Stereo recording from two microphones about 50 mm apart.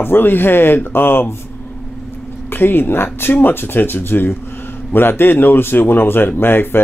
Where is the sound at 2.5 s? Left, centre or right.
Left.